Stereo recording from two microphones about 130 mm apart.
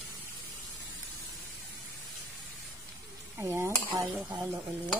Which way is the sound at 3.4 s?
20° right (ahead or behind).